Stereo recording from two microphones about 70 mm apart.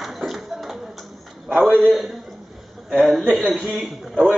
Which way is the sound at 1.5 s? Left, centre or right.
Centre.